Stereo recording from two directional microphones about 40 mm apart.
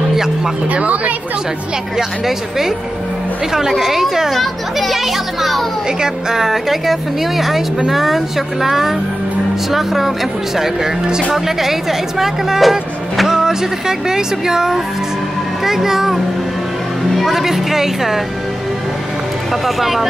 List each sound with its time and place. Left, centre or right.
0.7 s speech: right
2.0 s a child's voice: centre
5.9 s speech: centre
19.5 s a child's voice: centre